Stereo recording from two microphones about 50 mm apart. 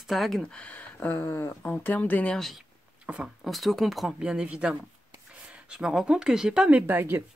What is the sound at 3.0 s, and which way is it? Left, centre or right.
Speech, right.